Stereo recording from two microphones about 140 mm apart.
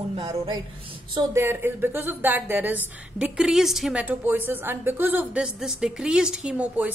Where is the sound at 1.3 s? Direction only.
15° right (ahead or behind).